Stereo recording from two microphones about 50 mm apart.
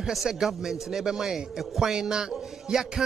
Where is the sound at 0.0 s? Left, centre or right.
Centre.